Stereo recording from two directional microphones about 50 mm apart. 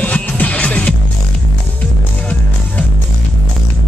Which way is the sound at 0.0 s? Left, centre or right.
Left.